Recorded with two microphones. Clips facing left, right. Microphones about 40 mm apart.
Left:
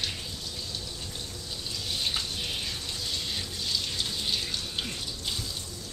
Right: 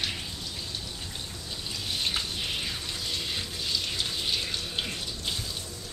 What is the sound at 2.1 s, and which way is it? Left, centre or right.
Water tap, centre.